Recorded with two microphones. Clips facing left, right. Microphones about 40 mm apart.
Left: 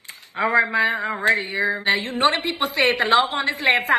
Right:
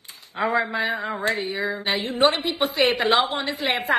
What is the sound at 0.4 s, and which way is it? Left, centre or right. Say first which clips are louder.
A man's voice: left 4 dB; left.